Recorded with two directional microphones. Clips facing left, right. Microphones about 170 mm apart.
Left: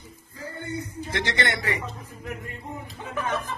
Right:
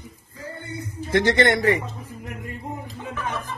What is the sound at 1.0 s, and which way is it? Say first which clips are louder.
Speech: right 10 dB; 50° right (ahead or behind).